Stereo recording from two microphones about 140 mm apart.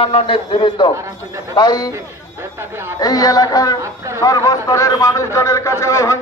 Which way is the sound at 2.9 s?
25° left (ahead or behind).